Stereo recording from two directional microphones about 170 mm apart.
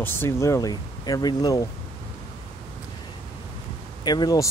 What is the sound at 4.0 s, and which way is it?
Speech, 25° left (ahead or behind).